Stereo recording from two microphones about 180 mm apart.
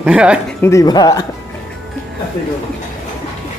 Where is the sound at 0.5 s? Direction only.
15° left (ahead or behind).